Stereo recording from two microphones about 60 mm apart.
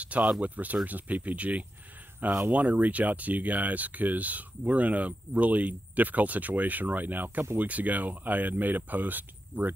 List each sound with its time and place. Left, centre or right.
0.2 s speech: right